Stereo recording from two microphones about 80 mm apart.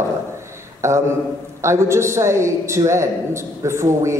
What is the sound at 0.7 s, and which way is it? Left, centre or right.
A woman's voice, right.